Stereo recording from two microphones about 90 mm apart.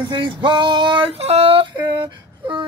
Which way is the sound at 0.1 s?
60° right (ahead or behind).